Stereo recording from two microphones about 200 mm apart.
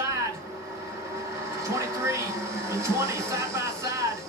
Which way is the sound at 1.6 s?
15° right (ahead or behind).